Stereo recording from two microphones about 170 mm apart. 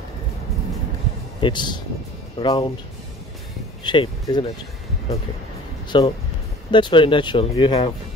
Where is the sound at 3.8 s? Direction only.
30° left (ahead or behind).